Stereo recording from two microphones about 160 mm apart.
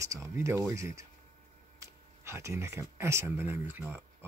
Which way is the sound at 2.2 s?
15° right (ahead or behind).